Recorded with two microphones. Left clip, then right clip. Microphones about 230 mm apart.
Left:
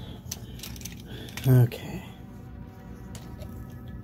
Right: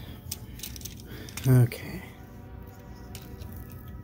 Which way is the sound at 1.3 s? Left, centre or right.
Centre.